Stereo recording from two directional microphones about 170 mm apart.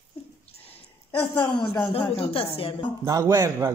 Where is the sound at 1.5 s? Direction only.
30° left (ahead or behind).